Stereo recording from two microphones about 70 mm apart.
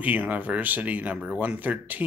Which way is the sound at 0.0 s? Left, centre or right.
Right.